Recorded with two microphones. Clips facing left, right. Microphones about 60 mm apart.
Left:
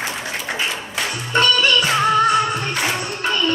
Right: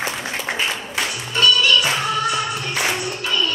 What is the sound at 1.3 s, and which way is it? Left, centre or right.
Music, left.